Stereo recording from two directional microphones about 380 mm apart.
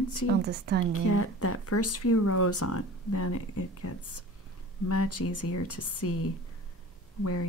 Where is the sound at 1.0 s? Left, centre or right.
Left.